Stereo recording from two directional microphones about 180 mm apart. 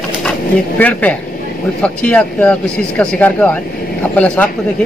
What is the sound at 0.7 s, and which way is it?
Speech, 10° left (ahead or behind).